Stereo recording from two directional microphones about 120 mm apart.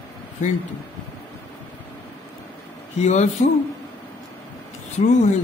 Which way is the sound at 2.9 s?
70° left (ahead or behind).